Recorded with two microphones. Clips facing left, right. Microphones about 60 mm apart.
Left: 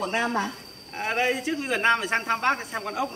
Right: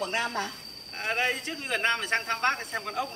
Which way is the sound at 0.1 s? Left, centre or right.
Centre.